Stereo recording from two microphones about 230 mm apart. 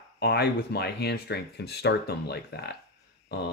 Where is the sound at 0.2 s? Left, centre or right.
Left.